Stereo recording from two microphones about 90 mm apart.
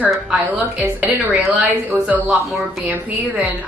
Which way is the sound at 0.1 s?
10° right (ahead or behind).